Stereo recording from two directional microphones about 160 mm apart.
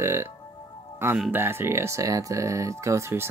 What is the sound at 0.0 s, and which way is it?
Music, 15° right (ahead or behind).